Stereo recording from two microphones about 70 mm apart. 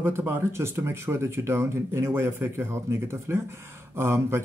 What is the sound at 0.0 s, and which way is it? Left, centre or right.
Speech, right.